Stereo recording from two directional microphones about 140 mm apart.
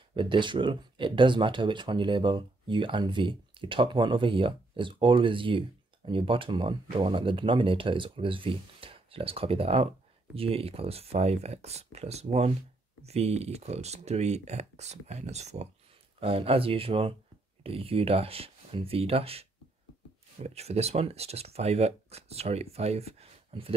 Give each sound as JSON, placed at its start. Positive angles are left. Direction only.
{"t": 0.1, "sound": "speech", "side_deg": -35}
{"t": 16.2, "sound": "speech", "side_deg": -40}
{"t": 20.4, "sound": "speech", "side_deg": -50}